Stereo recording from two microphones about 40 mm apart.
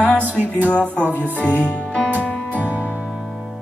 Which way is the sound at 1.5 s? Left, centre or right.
Left.